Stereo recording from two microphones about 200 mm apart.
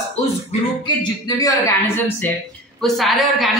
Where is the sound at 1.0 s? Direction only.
20° left (ahead or behind).